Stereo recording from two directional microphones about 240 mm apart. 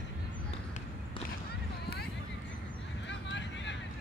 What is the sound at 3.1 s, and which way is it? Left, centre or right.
Vehicle, left.